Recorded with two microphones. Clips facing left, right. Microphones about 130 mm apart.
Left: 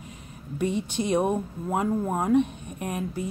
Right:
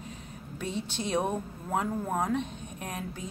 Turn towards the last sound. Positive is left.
turn(degrees=10)  # may be behind; listen again after turning